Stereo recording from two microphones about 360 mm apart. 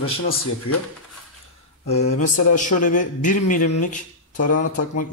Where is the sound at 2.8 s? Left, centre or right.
Left.